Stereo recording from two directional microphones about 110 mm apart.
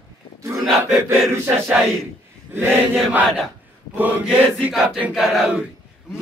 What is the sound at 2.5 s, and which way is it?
Mantra, 20° right (ahead or behind).